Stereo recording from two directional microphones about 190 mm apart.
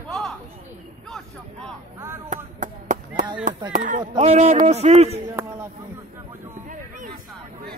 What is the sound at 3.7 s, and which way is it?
Speech, 45° right (ahead or behind).